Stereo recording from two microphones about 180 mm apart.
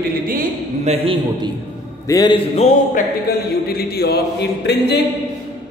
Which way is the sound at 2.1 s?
20° left (ahead or behind).